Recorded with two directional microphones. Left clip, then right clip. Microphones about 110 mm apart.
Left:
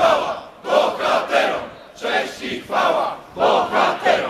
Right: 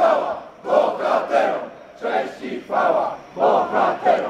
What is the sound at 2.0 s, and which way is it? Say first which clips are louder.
Battle cry: left 1 dB; 25° left (ahead or behind).